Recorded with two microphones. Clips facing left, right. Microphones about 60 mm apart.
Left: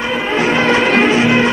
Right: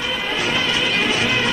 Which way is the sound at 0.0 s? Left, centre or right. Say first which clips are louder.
Left 7 dB; left.